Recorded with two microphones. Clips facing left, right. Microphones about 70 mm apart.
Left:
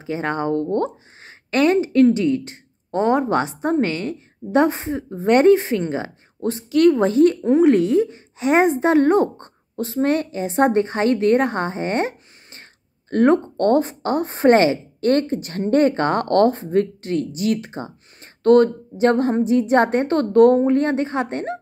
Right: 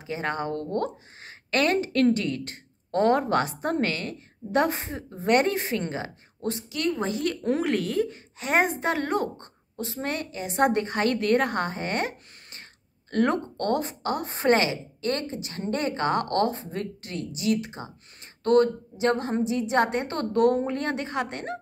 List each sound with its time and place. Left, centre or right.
0.0 s speech: left